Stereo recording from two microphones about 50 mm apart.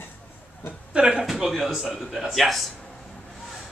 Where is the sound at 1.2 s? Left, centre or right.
Centre.